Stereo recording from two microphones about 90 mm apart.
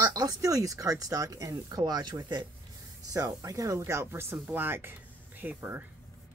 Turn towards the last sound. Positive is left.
turn(degrees=-25)  # may be behind; listen again after turning